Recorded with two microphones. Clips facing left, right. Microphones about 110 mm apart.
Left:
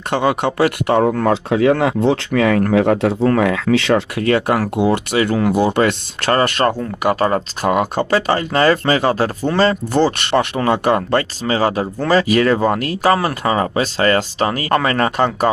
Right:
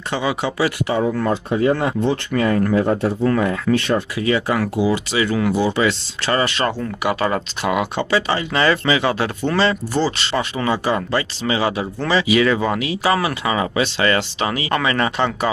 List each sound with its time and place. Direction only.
0.1 s speech: 55° left (ahead or behind)
11.4 s speech: 45° left (ahead or behind)